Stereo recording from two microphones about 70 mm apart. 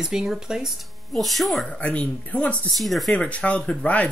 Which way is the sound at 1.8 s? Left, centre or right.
Centre.